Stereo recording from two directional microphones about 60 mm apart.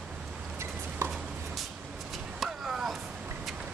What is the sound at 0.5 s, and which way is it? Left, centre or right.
Chopping, right.